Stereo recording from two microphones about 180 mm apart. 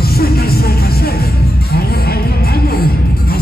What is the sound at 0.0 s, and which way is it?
Music, 60° left (ahead or behind).